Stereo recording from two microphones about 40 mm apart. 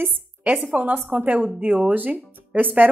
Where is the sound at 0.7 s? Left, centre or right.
Right.